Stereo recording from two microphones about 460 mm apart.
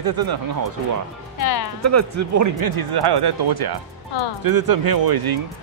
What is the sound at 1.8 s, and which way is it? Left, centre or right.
Speech, right.